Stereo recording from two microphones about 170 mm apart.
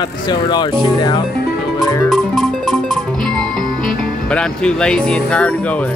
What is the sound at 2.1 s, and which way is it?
Music, centre (ahead or behind).